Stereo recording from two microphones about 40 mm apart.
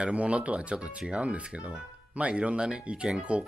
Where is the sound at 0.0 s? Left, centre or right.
Right.